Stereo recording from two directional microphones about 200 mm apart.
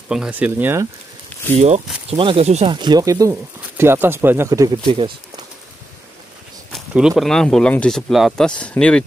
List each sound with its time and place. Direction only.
0.1 s speech: 5° right (ahead or behind)
1.3 s a sound: 10° left (ahead or behind)
2.0 s speech: 30° right (ahead or behind)
6.7 s speech: 5° right (ahead or behind)